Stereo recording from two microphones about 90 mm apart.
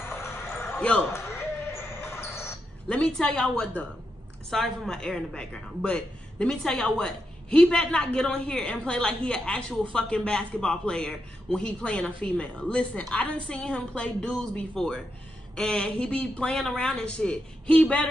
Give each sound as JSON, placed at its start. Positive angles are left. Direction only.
{"t": 0.0, "sound": "a sound", "side_deg": 30}
{"t": 0.7, "sound": "speech", "side_deg": 15}
{"t": 1.1, "sound": "basketball bounce", "side_deg": 30}
{"t": 2.9, "sound": "a woman's voice", "side_deg": 10}